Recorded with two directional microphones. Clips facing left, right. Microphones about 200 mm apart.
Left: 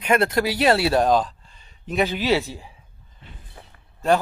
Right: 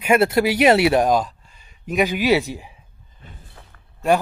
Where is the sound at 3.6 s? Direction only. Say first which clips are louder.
Left 2 dB; 15° left (ahead or behind).